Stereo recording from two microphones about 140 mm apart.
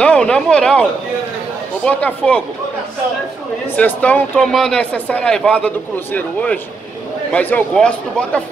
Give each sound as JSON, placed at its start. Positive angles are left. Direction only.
{"t": 0.0, "sound": "speech", "side_deg": 5}
{"t": 1.9, "sound": "speech", "side_deg": 10}
{"t": 3.7, "sound": "speech", "side_deg": 10}
{"t": 4.4, "sound": "speech", "side_deg": 0}